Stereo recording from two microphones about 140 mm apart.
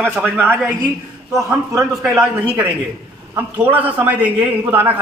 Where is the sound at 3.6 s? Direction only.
10° right (ahead or behind).